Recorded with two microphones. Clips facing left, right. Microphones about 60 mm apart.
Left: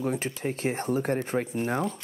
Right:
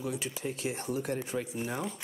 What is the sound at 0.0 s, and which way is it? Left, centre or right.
Speech, left.